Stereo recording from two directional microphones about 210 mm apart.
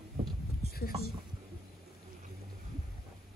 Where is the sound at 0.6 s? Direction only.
45° left (ahead or behind).